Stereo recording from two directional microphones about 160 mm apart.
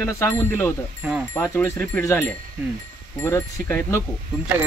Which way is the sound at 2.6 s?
10° right (ahead or behind).